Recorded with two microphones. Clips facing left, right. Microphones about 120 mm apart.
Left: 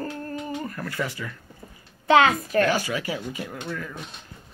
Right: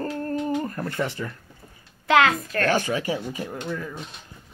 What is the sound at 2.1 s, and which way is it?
Speech, centre (ahead or behind).